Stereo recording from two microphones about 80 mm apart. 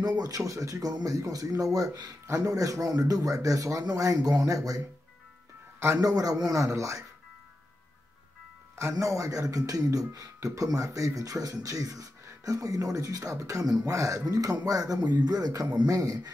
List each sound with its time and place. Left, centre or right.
0.0 s speech: right
2.2 s speech: right
5.8 s a man's voice: right
6.0 s speech: right
9.0 s speech: right